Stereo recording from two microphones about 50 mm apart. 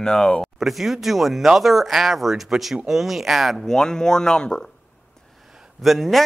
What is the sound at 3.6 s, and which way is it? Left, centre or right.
Speech, centre.